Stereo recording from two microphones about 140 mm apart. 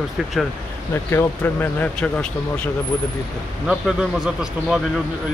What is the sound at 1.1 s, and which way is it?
Speech, 15° left (ahead or behind).